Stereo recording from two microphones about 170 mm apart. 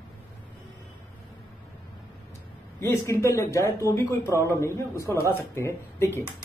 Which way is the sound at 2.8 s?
15° left (ahead or behind).